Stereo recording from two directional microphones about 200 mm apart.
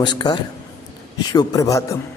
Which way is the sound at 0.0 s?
20° left (ahead or behind).